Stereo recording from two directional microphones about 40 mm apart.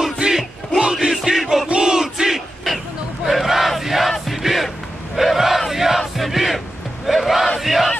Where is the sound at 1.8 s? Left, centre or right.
Centre.